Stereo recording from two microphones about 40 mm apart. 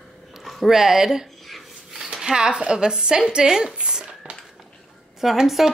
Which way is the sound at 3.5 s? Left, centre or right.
Centre.